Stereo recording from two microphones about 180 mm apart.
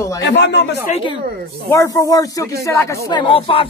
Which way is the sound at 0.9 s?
25° left (ahead or behind).